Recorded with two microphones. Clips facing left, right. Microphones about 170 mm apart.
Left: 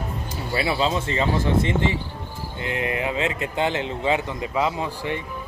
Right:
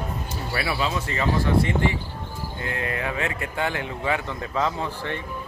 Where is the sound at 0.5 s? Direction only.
25° left (ahead or behind).